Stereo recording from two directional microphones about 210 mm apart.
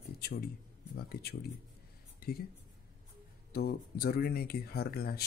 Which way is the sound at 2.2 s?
45° left (ahead or behind).